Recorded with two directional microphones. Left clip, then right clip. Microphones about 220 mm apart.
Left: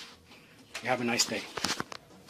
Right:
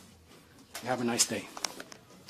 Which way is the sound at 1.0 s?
25° right (ahead or behind).